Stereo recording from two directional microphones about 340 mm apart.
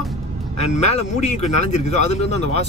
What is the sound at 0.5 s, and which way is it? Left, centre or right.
A man's voice, centre.